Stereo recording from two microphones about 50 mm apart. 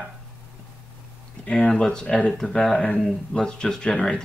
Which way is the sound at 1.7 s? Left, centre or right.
Centre.